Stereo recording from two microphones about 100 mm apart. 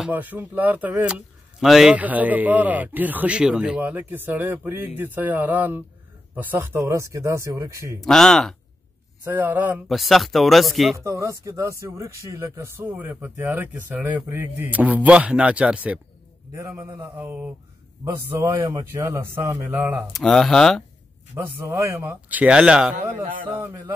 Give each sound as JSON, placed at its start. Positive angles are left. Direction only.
{"t": 0.0, "sound": "speech", "side_deg": -15}
{"t": 1.1, "sound": "a man's voice", "side_deg": 0}
{"t": 2.0, "sound": "speech", "side_deg": -15}
{"t": 8.0, "sound": "speech", "side_deg": 5}
{"t": 9.2, "sound": "speech", "side_deg": -20}
{"t": 9.8, "sound": "speech", "side_deg": 0}
{"t": 11.1, "sound": "speech", "side_deg": -30}
{"t": 16.5, "sound": "speech", "side_deg": -25}
{"t": 18.3, "sound": "speech", "side_deg": -30}
{"t": 19.7, "sound": "speech", "side_deg": -20}
{"t": 20.1, "sound": "speech", "side_deg": 5}
{"t": 21.4, "sound": "speech", "side_deg": -25}
{"t": 23.0, "sound": "speech", "side_deg": -25}